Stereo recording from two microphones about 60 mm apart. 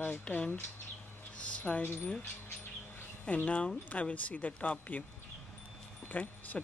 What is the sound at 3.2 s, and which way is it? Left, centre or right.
Speech, left.